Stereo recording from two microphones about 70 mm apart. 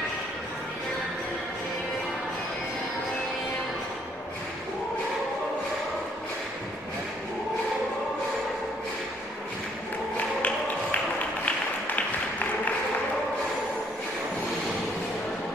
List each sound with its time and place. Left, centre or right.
10.1 s music: centre